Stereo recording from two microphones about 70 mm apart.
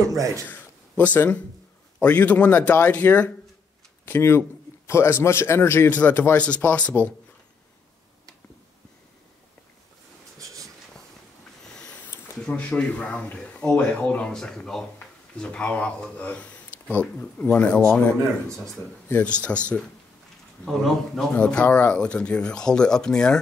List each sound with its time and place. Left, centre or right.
0.0 s a man's voice: right
0.5 s a sound: left
2.0 s speech: left
4.0 s a man's voice: left
5.9 s speech: left
11.6 s a sound: centre
12.4 s speech: centre
17.7 s speech: centre
19.2 s speech: centre
20.6 s speech: centre